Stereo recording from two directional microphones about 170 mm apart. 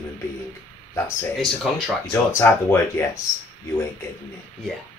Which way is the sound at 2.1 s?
15° left (ahead or behind).